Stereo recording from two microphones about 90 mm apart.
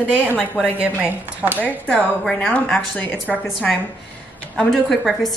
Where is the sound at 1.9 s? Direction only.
15° left (ahead or behind).